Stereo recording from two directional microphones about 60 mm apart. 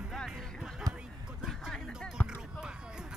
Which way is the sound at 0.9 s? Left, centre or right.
Right.